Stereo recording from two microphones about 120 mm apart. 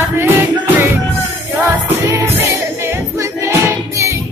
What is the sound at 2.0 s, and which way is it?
Music, 25° right (ahead or behind).